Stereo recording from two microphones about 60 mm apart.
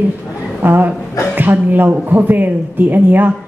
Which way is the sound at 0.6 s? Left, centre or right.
Right.